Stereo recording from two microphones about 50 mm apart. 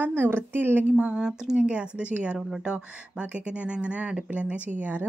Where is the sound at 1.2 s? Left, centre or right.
Centre.